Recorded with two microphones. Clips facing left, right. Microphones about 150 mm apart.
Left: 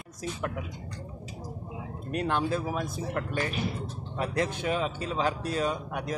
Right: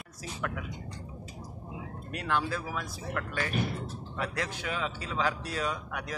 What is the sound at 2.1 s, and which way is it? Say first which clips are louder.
A man's voice: left 4 dB; 20° left (ahead or behind).